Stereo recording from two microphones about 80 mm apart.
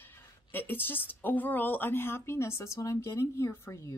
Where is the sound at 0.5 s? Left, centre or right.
Left.